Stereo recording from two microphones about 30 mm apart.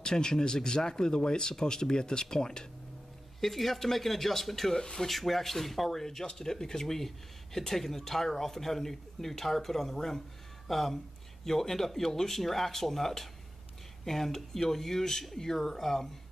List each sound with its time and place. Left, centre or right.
0.0 s speech: left
3.3 s speech: centre
4.7 s speech: left
5.0 s speech: centre